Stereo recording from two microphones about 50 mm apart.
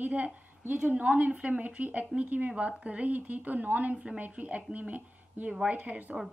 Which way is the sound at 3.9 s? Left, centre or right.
Centre.